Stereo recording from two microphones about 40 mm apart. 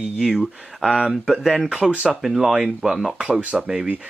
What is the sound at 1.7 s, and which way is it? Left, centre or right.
Speech, right.